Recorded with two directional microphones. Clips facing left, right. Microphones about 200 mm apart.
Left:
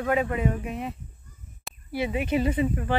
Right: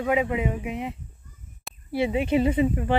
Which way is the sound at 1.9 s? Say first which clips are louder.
Right 3 dB; 25° right (ahead or behind).